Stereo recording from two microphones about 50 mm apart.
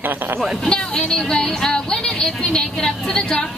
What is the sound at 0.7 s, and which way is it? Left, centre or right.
Speech, centre.